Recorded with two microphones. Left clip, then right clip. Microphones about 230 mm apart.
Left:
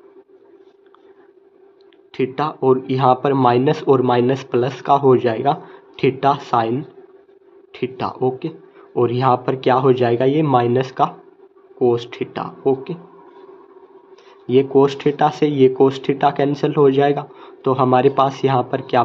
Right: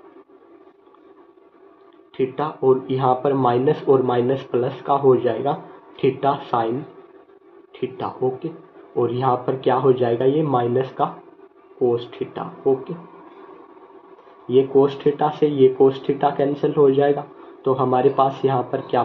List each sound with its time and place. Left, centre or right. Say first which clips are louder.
2.1 s speech: left 2 dB; left
7.7 s speech: left 3 dB; left
14.5 s speech: left 2 dB; left